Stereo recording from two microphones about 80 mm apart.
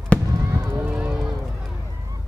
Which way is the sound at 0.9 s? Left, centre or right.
Centre.